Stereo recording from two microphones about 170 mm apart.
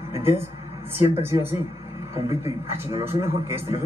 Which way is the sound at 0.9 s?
15° right (ahead or behind).